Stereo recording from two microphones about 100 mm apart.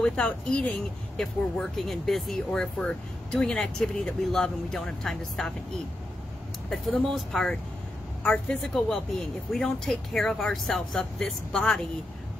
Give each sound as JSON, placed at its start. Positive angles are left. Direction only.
{"t": 0.0, "sound": "speech", "side_deg": 10}
{"t": 6.7, "sound": "speech", "side_deg": 5}
{"t": 8.2, "sound": "a woman's voice", "side_deg": 15}
{"t": 8.7, "sound": "speech", "side_deg": 5}